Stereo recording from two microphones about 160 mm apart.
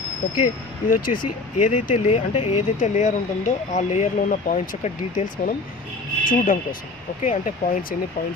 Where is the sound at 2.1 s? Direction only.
45° left (ahead or behind).